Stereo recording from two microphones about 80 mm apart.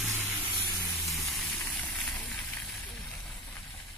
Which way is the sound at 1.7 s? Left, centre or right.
Centre.